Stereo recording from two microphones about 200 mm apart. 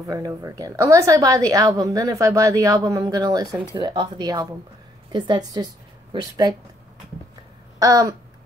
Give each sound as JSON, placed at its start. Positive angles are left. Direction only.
{"t": 0.0, "sound": "a woman's voice", "side_deg": -15}
{"t": 7.8, "sound": "a woman's voice", "side_deg": -20}